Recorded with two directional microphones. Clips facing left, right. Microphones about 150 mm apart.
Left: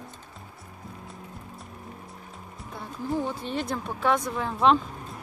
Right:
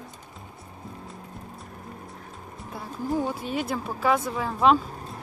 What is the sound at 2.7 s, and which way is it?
Speech, 10° right (ahead or behind).